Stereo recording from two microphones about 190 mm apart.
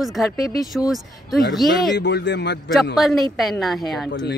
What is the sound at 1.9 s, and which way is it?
Speech, 65° left (ahead or behind).